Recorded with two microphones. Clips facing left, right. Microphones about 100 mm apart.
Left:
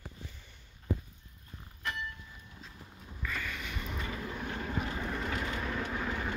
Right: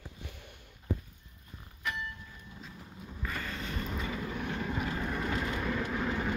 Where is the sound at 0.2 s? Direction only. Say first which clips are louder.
Right 3 dB; 65° right (ahead or behind).